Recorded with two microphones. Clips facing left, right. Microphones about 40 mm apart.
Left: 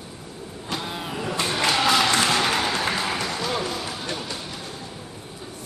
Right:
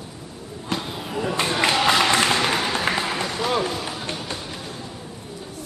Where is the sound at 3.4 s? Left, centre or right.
Centre.